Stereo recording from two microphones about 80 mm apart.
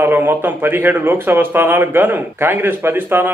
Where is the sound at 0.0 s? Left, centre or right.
Right.